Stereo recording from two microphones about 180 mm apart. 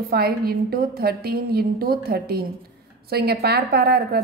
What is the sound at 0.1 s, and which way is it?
A woman's voice, 60° right (ahead or behind).